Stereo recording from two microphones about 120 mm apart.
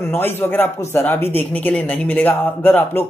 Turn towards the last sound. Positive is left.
turn(degrees=15)  # may be behind; listen again after turning